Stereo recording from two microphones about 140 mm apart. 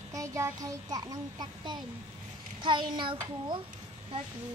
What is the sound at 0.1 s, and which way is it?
A child's voice, 20° right (ahead or behind).